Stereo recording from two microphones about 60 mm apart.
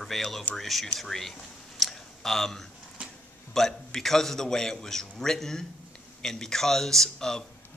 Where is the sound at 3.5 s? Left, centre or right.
Centre.